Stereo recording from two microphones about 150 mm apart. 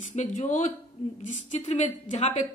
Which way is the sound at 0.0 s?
55° left (ahead or behind).